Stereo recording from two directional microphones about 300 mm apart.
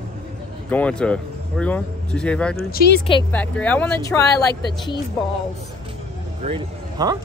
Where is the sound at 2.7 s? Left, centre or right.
Left.